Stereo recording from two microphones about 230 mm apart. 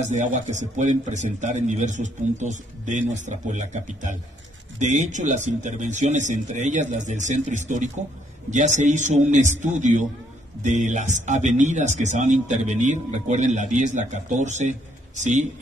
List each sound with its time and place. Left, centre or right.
0.1 s speech: right